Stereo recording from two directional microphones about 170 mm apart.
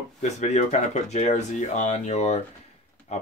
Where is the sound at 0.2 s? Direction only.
45° left (ahead or behind).